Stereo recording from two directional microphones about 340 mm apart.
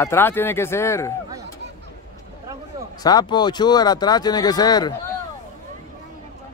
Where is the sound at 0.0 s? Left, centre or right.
Centre.